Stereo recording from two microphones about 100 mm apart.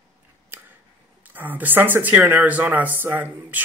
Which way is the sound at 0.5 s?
20° right (ahead or behind).